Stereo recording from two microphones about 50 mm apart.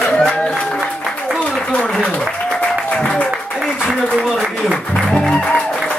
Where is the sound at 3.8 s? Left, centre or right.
Left.